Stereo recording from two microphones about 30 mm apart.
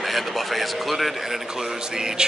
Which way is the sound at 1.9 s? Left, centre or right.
Centre.